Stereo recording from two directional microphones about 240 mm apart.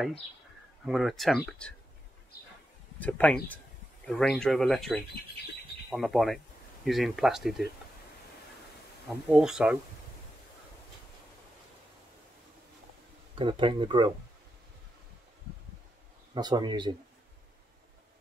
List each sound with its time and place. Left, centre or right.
0.8 s speech: centre
3.0 s speech: centre
9.3 s speech: centre
13.3 s speech: right
16.3 s speech: centre